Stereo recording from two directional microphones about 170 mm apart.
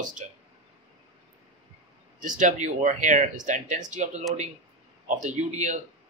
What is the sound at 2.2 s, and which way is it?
A man's voice, 50° right (ahead or behind).